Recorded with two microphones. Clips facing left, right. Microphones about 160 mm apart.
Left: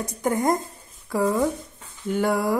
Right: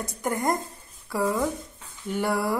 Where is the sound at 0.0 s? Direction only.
20° left (ahead or behind).